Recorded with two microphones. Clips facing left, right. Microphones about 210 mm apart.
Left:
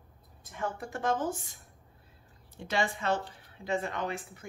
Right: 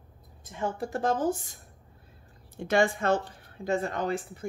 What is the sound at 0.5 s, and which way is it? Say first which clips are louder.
Speech: right 5 dB; 30° right (ahead or behind).